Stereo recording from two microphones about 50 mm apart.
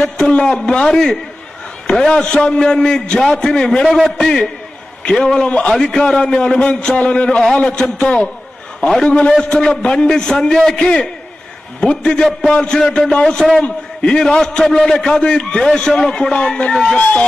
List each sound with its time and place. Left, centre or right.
0.0 s a man's voice: centre
8.8 s a man's voice: centre